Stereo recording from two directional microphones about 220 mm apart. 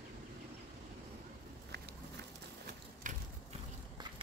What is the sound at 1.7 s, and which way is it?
Biting, 50° right (ahead or behind).